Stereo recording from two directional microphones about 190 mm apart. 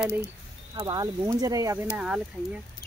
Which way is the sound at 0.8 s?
20° right (ahead or behind).